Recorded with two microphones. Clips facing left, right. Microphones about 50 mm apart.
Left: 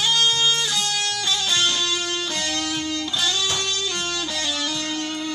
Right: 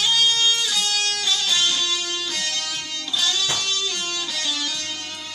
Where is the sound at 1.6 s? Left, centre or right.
Centre.